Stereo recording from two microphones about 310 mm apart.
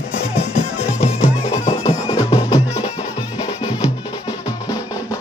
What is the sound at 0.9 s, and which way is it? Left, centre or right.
Music, left.